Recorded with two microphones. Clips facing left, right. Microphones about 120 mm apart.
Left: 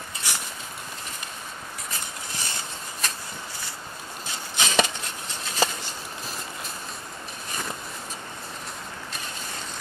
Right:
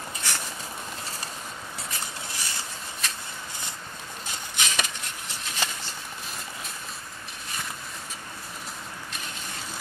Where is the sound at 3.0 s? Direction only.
40° left (ahead or behind).